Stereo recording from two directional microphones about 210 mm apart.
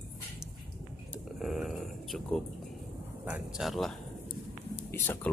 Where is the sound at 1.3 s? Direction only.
Centre (ahead or behind).